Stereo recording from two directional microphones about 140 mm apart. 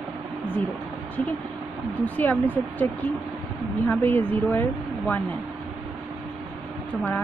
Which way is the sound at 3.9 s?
15° left (ahead or behind).